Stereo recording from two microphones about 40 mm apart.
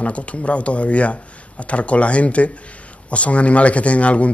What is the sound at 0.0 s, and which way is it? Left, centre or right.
Speech, left.